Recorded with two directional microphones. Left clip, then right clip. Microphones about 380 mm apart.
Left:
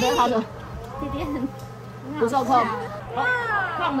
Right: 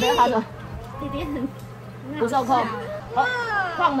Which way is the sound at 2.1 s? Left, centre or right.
Centre.